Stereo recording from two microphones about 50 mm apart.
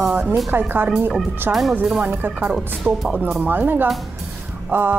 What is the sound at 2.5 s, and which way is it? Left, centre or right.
Speech, centre.